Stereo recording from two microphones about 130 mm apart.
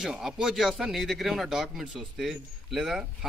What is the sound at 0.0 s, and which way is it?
Speech, 5° right (ahead or behind).